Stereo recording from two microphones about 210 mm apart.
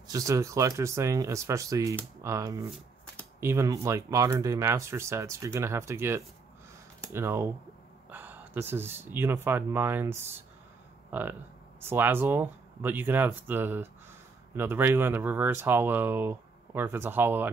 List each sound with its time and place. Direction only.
0.1 s speech: 15° right (ahead or behind)